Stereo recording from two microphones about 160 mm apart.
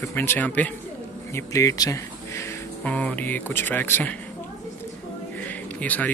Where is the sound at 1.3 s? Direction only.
20° left (ahead or behind).